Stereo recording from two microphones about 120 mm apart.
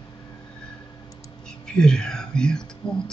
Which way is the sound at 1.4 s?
5° left (ahead or behind).